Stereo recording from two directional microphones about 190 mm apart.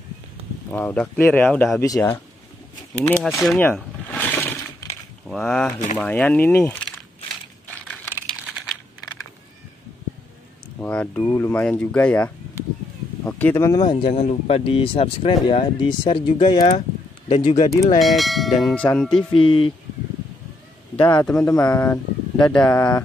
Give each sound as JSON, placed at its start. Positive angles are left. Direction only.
{"t": 0.7, "sound": "speech", "side_deg": 10}
{"t": 2.9, "sound": "church bell", "side_deg": 5}
{"t": 3.6, "sound": "a sound", "side_deg": 10}
{"t": 5.2, "sound": "church bell", "side_deg": 0}
{"t": 5.9, "sound": "speech", "side_deg": 5}
{"t": 7.6, "sound": "typing", "side_deg": 10}
{"t": 10.8, "sound": "speech", "side_deg": 5}
{"t": 18.0, "sound": "church bell", "side_deg": 0}
{"t": 19.3, "sound": "speech", "side_deg": 25}
{"t": 21.0, "sound": "speech", "side_deg": 25}